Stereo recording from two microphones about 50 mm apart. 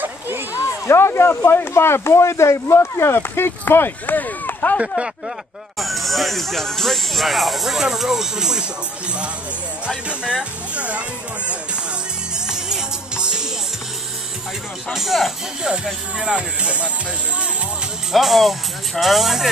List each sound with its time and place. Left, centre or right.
0.5 s a sound: left
1.4 s speech: left
4.7 s speech: centre
5.8 s speech: centre
9.8 s speech: centre
12.4 s music: centre
14.9 s speech: centre
15.6 s speech: centre
18.1 s speech: centre